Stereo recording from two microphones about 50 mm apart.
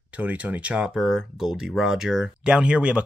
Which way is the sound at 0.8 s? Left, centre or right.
Centre.